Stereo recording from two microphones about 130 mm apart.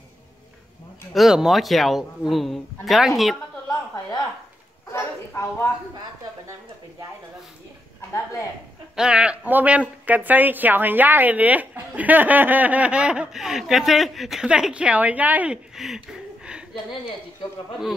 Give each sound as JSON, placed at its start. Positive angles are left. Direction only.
{"t": 1.1, "sound": "a man's voice", "side_deg": -5}
{"t": 4.9, "sound": "a sound", "side_deg": 20}
{"t": 8.1, "sound": "a woman's voice", "side_deg": 25}
{"t": 8.9, "sound": "a woman's voice", "side_deg": -5}